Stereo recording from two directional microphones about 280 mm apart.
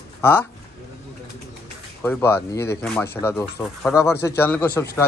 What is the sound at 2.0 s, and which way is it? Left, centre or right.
A man's voice, centre.